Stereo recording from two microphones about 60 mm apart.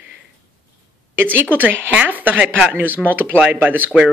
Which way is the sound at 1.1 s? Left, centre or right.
Right.